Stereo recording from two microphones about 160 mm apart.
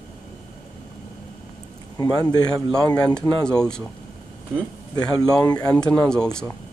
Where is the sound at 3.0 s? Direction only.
5° left (ahead or behind).